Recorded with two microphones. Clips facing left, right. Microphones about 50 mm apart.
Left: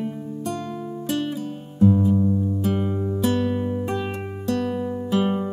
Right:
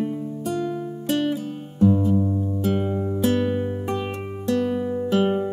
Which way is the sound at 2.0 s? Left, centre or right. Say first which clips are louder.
Left 1 dB; centre.